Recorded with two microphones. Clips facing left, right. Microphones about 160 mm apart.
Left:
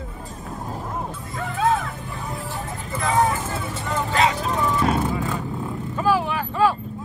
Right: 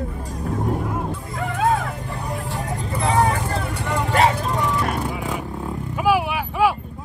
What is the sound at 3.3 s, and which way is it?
Vehicle, 70° right (ahead or behind).